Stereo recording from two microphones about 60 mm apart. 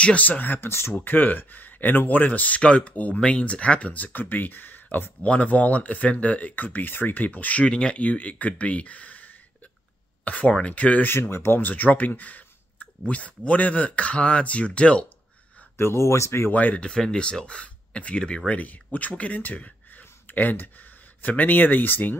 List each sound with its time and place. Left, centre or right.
0.0 s speech: left
0.9 s speech: left
5.2 s speech: left
7.6 s speech: centre
11.1 s speech: left; by 15.0 s centre
15.8 s speech: left
16.4 s speech: left